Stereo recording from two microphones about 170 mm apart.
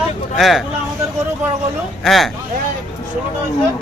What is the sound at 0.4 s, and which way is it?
Speech, centre (ahead or behind).